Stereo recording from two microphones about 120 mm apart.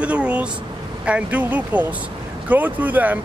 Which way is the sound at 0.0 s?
10° right (ahead or behind).